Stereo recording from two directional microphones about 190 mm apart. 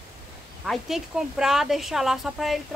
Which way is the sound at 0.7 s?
Centre (ahead or behind).